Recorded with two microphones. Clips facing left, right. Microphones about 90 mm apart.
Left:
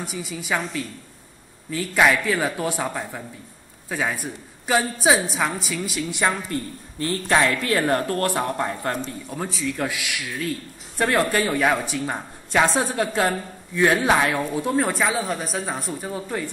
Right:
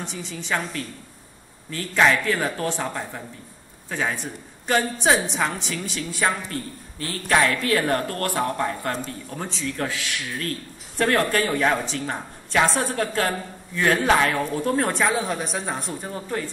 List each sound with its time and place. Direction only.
0.0 s a woman's voice: 10° left (ahead or behind)
7.0 s speech: 25° left (ahead or behind)
9.3 s a woman's voice: 10° left (ahead or behind)